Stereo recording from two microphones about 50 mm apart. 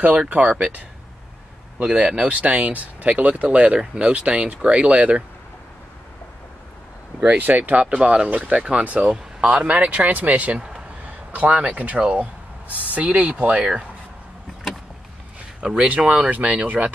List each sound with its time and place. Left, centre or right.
0.3 s speech: right
7.2 s speech: right
15.6 s speech: centre
16.1 s speech: right